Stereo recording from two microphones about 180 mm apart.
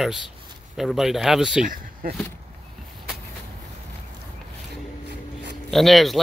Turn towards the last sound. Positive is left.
turn(degrees=0)  # may be behind; listen again after turning